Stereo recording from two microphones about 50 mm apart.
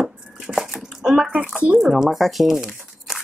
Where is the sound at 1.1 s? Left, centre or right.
Centre.